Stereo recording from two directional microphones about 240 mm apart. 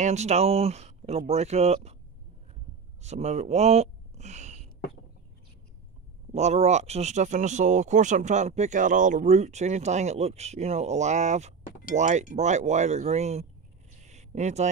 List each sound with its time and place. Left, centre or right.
0.0 s speech: right
3.0 s speech: right
6.3 s speech: right